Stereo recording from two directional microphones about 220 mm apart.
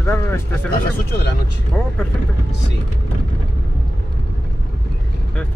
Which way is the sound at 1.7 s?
5° left (ahead or behind).